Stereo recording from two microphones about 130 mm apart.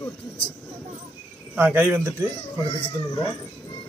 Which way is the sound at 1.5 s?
15° right (ahead or behind).